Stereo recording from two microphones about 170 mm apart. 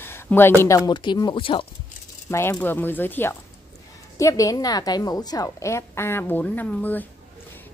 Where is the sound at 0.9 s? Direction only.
25° left (ahead or behind).